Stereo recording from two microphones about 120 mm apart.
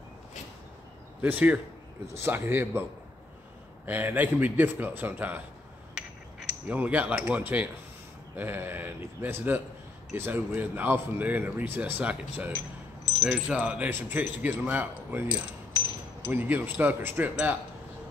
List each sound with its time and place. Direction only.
1.2 s speech: 15° right (ahead or behind)
3.8 s speech: 15° right (ahead or behind)
6.7 s speech: 15° right (ahead or behind)